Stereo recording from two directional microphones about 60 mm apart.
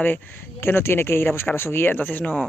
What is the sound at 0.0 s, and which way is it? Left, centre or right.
Speech, left.